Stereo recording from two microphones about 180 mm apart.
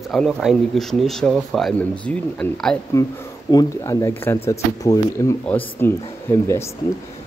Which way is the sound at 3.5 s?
20° left (ahead or behind).